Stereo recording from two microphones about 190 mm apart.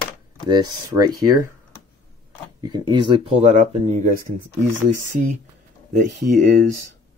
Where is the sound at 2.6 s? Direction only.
25° right (ahead or behind); by 5.3 s 40° right (ahead or behind).